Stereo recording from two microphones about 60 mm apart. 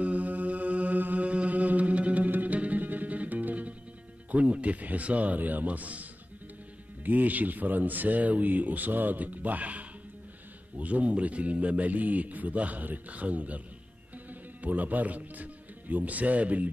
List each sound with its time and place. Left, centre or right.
0.0 s mantra: right
4.3 s speech: right
7.1 s speech: right
14.6 s a man's voice: right